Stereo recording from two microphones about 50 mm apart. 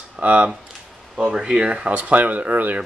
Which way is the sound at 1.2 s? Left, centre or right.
Centre.